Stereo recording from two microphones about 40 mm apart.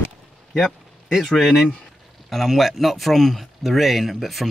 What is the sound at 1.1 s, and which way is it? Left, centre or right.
Speech, centre.